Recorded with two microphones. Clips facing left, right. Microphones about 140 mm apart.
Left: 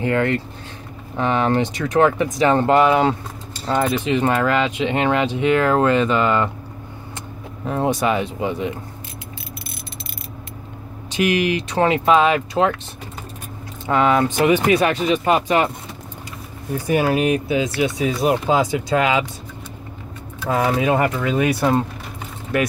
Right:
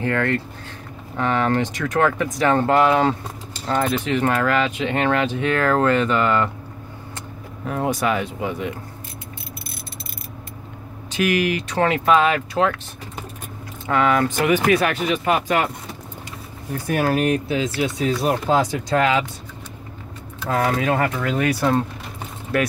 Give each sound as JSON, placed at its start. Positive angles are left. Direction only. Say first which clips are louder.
{"t": 0.0, "sound": "speech", "louder": "left 2 dB", "side_deg": 15}
{"t": 7.6, "sound": "speech", "louder": "left 2 dB", "side_deg": 25}
{"t": 11.1, "sound": "speech", "louder": "left 1 dB", "side_deg": 20}
{"t": 13.8, "sound": "speech", "louder": "left 2 dB", "side_deg": 25}
{"t": 16.7, "sound": "speech", "louder": "left 2 dB", "side_deg": 10}
{"t": 20.4, "sound": "speech", "louder": "left 2 dB", "side_deg": 10}
{"t": 21.5, "sound": "speech", "louder": "right 1 dB", "side_deg": 25}